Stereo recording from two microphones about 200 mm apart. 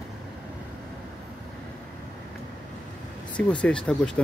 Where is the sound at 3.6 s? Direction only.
5° left (ahead or behind).